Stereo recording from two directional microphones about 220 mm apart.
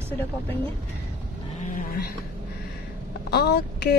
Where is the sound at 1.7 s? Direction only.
45° left (ahead or behind).